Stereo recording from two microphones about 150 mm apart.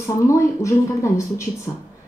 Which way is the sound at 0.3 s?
20° left (ahead or behind).